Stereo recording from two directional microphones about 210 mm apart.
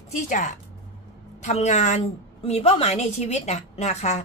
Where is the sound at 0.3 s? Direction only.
35° left (ahead or behind).